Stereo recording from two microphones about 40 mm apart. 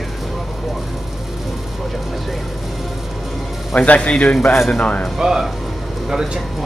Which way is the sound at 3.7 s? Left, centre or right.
Left.